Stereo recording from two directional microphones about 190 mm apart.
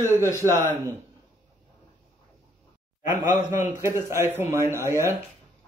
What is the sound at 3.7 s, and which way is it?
A man's voice, 15° right (ahead or behind).